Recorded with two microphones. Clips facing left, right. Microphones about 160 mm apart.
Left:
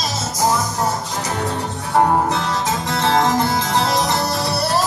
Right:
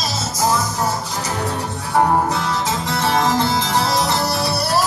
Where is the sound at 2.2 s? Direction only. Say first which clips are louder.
Even; 20° left (ahead or behind).